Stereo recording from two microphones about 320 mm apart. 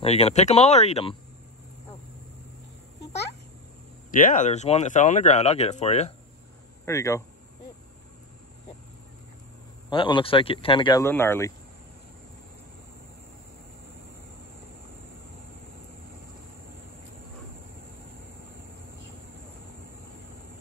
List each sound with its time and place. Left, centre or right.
0.0 s speech: centre
4.1 s speech: left
6.9 s speech: centre
9.8 s speech: centre